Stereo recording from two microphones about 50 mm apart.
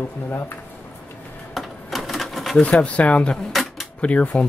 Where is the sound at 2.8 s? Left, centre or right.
Left.